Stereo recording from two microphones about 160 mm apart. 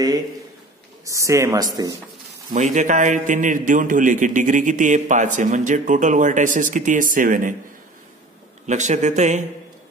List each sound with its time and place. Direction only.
1.0 s speech: 20° right (ahead or behind)
2.5 s a man's voice: 50° right (ahead or behind)
8.6 s a man's voice: 50° right (ahead or behind)